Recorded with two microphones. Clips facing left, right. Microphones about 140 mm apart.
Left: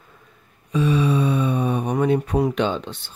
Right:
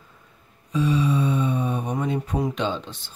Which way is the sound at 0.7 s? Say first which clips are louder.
Left 2 dB; 65° left (ahead or behind).